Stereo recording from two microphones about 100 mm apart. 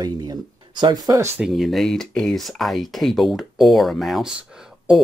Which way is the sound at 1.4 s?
Centre (ahead or behind).